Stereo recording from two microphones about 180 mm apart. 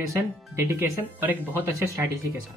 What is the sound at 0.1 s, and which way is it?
Speech, 10° right (ahead or behind).